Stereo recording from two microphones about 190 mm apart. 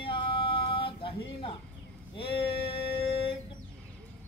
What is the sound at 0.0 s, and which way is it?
Music, 25° left (ahead or behind).